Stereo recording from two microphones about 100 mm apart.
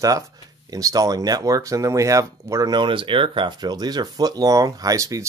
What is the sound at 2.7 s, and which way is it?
Speech, 55° right (ahead or behind).